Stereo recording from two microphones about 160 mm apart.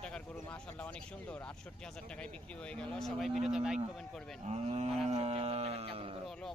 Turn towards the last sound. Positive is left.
turn(degrees=5)  # may be behind; listen again after turning